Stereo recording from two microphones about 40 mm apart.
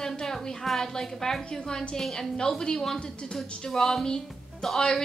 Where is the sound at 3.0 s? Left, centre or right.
Left.